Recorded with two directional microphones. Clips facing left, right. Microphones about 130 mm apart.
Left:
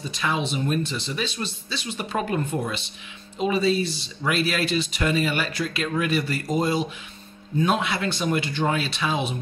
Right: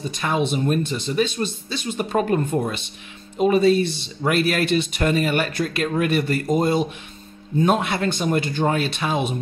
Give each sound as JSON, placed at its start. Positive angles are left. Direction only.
{"t": 0.1, "sound": "speech", "side_deg": -50}